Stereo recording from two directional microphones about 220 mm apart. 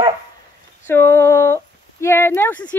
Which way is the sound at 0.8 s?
10° left (ahead or behind).